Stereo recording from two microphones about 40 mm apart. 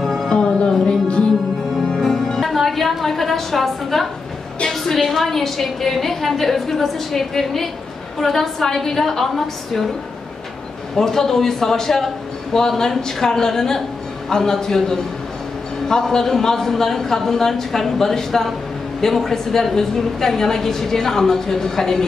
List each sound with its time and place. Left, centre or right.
0.3 s music: left
2.0 s music: centre
4.6 s a woman's voice: centre
11.0 s a woman's voice: centre